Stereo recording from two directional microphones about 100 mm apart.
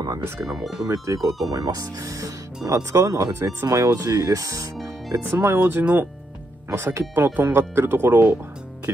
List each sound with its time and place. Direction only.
0.5 s speech: 5° right (ahead or behind)
0.8 s speech: 35° right (ahead or behind)